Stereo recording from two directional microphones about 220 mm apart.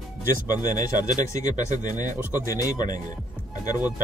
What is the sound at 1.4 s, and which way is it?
Speech, 35° right (ahead or behind).